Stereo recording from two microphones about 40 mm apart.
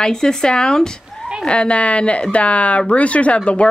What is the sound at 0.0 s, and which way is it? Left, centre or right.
Speech, centre.